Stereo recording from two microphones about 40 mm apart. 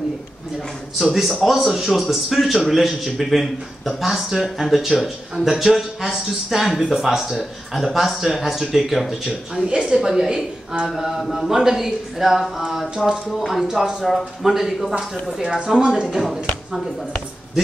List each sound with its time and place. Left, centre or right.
1.1 s a man's voice: centre
9.3 s speech: right
11.0 s a man's voice: centre
14.4 s speech: centre
16.1 s a man's voice: centre